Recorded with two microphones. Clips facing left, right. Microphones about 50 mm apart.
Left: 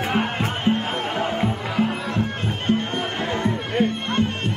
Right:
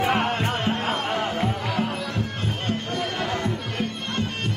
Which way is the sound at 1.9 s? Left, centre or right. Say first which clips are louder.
Left 4 dB; left.